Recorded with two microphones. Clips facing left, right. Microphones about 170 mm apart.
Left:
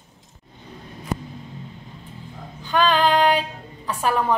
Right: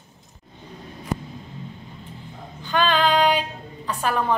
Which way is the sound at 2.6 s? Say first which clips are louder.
Left 2 dB; 5° left (ahead or behind).